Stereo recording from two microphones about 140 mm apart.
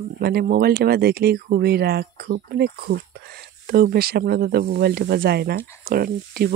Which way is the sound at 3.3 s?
90° right.